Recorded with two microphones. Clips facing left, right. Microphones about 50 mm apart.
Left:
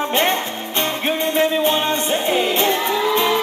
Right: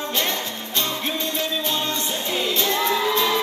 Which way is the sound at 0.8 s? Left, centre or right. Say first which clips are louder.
Left 6 dB; left.